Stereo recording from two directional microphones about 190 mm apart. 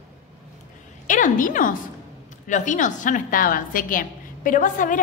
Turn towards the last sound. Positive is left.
turn(degrees=45)  # may be behind; listen again after turning